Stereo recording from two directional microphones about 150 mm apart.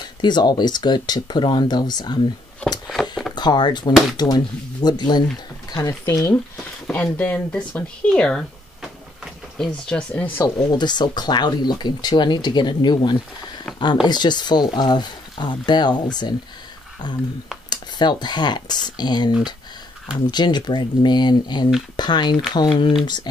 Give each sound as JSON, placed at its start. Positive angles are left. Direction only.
{"t": 0.0, "sound": "speech", "side_deg": 30}
{"t": 2.9, "sound": "a sound", "side_deg": 0}
{"t": 3.3, "sound": "speech", "side_deg": 30}
{"t": 6.5, "sound": "a sound", "side_deg": 10}
{"t": 9.7, "sound": "speech", "side_deg": 10}
{"t": 10.8, "sound": "speech", "side_deg": 30}